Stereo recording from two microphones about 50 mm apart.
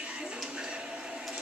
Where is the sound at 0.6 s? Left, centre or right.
Centre.